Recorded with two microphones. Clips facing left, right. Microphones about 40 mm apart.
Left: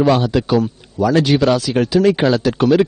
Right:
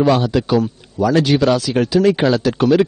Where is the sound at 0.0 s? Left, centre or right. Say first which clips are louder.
Even; centre.